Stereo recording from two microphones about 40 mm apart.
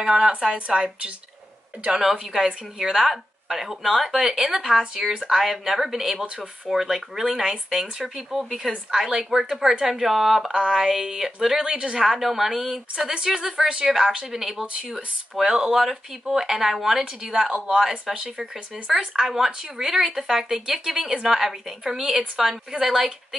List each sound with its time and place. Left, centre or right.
0.0 s speech: centre
2.1 s speech: centre
4.1 s speech: centre
12.0 s speech: centre
17.5 s speech: right
17.7 s speech: centre
19.1 s speech: centre